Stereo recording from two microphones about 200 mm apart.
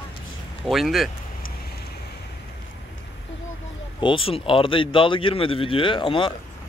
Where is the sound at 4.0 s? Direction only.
25° left (ahead or behind).